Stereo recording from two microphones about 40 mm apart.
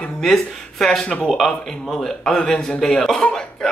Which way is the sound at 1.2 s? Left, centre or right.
Centre.